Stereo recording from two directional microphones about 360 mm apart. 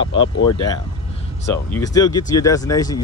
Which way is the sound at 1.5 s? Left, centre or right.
Centre.